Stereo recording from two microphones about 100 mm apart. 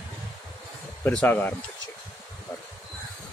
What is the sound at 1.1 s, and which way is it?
Speech, 15° left (ahead or behind).